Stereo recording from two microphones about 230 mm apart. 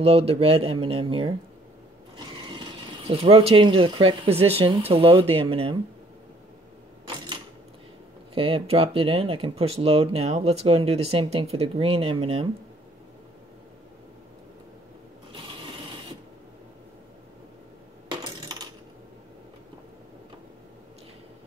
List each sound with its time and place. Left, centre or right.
0.0 s speech: right
8.4 s speech: right
18.1 s coin: centre